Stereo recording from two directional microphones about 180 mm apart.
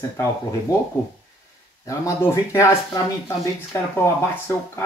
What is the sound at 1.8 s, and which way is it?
Speech, 15° left (ahead or behind).